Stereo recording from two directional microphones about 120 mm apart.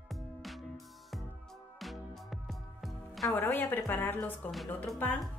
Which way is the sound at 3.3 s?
15° left (ahead or behind).